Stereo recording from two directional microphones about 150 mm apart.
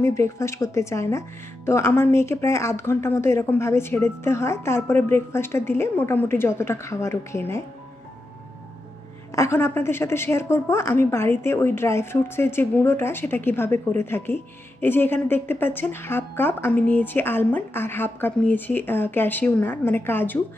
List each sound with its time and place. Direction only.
0.0 s a woman's voice: 20° left (ahead or behind)
9.3 s a woman's voice: 20° left (ahead or behind)